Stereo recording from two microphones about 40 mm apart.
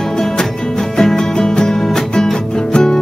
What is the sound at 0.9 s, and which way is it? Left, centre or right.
Music, centre.